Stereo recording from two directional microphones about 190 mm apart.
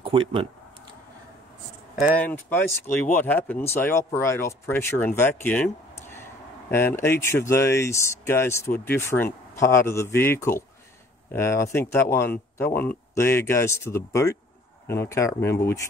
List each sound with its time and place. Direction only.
0.0 s speech: 30° right (ahead or behind)
2.1 s speech: 10° left (ahead or behind)